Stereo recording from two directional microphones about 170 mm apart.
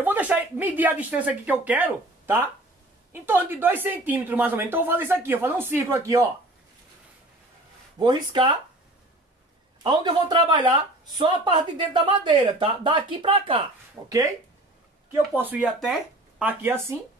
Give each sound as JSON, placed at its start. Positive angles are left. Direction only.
{"t": 0.0, "sound": "speech", "side_deg": -10}
{"t": 8.0, "sound": "speech", "side_deg": -25}
{"t": 9.8, "sound": "speech", "side_deg": -25}
{"t": 15.3, "sound": "speech", "side_deg": -10}